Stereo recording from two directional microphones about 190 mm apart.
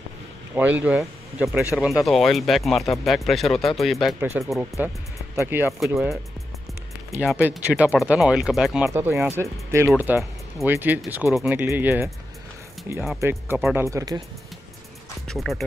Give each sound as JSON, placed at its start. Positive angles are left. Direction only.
{"t": 0.6, "sound": "speech", "side_deg": -10}
{"t": 5.7, "sound": "speech", "side_deg": 0}
{"t": 7.2, "sound": "speech", "side_deg": -5}
{"t": 8.8, "sound": "speech", "side_deg": -15}
{"t": 13.2, "sound": "speech", "side_deg": -15}
{"t": 13.6, "sound": "speech", "side_deg": -5}
{"t": 13.8, "sound": "speech", "side_deg": -20}
{"t": 15.2, "sound": "speech", "side_deg": 0}